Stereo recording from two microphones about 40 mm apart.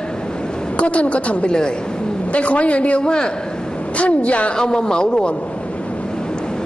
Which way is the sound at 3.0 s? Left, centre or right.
Left.